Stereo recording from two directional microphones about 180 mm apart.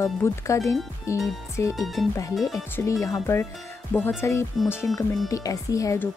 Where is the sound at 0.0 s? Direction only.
15° left (ahead or behind).